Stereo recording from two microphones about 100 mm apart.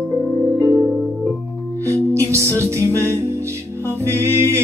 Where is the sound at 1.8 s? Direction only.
30° right (ahead or behind).